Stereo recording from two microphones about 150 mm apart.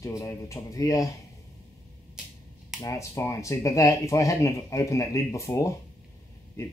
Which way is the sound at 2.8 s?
20° left (ahead or behind).